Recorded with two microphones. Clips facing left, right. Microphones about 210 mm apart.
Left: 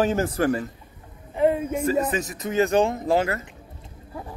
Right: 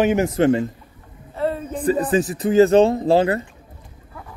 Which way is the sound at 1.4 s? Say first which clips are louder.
Left 3 dB; 15° left (ahead or behind).